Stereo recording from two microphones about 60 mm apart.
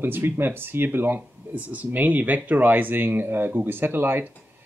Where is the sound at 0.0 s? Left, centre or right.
Right.